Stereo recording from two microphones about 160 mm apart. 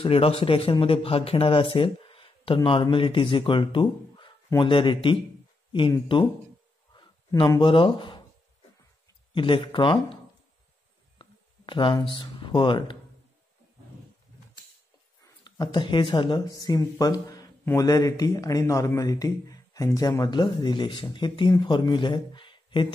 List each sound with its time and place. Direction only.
0.0 s speech: 35° left (ahead or behind)
6.9 s a sound: 25° left (ahead or behind)
9.3 s speech: 30° left (ahead or behind)
11.1 s speech: 30° left (ahead or behind)
15.2 s speech: 25° left (ahead or behind)